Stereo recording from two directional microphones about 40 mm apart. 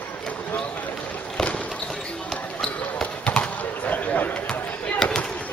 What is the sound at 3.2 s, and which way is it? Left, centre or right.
Basketball bounce, left.